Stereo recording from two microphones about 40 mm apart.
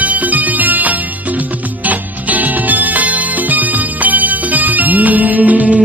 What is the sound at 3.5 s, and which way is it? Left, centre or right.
Music, right.